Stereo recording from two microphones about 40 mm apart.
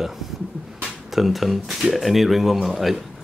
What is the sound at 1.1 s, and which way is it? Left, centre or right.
Speech, centre.